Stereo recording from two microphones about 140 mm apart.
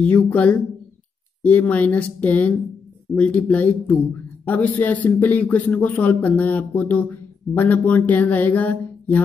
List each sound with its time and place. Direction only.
0.0 s a man's voice: 10° left (ahead or behind)